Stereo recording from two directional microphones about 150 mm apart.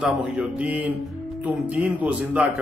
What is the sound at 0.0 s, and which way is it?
A man's voice, 5° right (ahead or behind).